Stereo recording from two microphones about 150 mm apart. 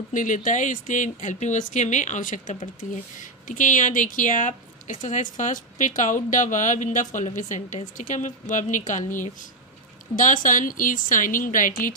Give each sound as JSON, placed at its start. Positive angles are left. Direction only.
{"t": 0.1, "sound": "speech", "side_deg": 60}